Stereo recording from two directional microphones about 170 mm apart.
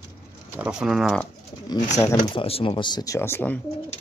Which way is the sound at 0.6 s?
5° right (ahead or behind).